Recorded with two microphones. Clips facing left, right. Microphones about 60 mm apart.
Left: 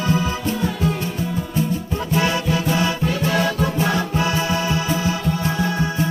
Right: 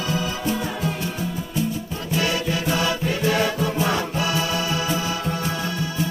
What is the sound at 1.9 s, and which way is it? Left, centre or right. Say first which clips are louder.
Music: left 5 dB; left.